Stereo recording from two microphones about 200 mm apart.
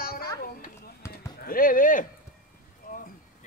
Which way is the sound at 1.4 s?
45° left (ahead or behind).